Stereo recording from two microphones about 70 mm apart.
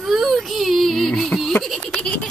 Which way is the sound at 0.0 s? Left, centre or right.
Centre.